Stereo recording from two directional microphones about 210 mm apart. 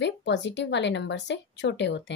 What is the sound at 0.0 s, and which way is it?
Speech, 55° left (ahead or behind).